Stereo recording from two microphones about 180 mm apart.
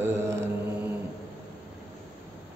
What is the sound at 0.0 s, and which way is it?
Mantra, 15° right (ahead or behind).